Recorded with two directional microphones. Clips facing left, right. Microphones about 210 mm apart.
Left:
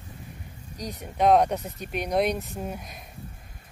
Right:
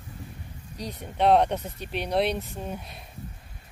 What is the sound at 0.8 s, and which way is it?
Speech, 10° left (ahead or behind).